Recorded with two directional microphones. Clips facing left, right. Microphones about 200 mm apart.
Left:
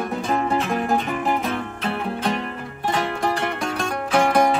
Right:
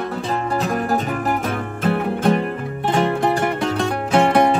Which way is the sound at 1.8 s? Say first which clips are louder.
Right 7 dB; 50° right (ahead or behind).